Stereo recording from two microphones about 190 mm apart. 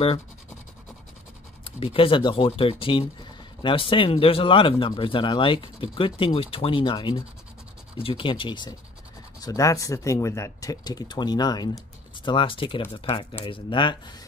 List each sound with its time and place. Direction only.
1.8 s speech: 30° left (ahead or behind)